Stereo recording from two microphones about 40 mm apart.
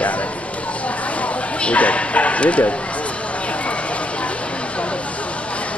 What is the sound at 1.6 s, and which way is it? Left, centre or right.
Speech, left.